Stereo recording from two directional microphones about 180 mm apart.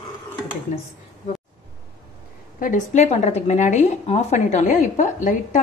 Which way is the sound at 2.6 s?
45° left (ahead or behind).